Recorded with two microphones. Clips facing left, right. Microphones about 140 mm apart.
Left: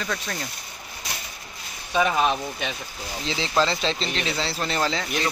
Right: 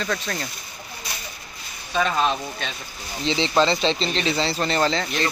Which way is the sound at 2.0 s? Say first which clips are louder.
Even; 10° left (ahead or behind).